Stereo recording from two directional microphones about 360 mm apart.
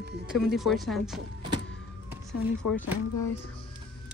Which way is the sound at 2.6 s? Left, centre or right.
Left.